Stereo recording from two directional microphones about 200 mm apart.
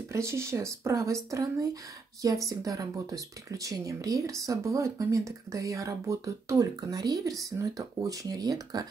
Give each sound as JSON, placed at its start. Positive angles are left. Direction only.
{"t": 0.1, "sound": "speech", "side_deg": -15}